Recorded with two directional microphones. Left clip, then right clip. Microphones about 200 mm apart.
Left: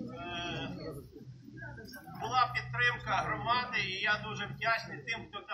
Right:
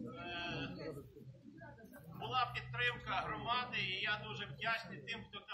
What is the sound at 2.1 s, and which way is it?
A man's voice, 15° right (ahead or behind).